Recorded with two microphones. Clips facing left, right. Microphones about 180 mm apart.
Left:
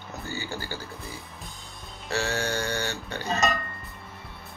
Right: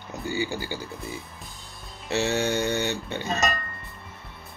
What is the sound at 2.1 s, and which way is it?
Speech, 20° right (ahead or behind).